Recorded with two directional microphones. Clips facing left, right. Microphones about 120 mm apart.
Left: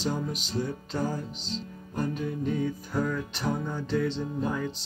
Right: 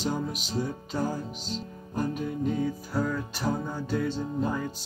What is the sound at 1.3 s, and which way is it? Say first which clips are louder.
Music: right 1 dB; 45° right (ahead or behind).